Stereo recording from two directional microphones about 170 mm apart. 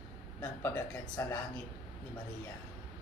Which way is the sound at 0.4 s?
15° left (ahead or behind).